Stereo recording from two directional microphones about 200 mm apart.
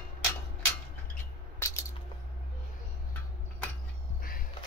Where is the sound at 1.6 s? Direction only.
15° left (ahead or behind).